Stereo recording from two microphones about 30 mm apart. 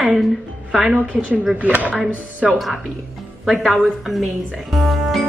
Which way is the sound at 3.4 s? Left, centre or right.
Centre.